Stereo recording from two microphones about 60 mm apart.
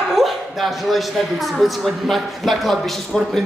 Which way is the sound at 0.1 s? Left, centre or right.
Centre.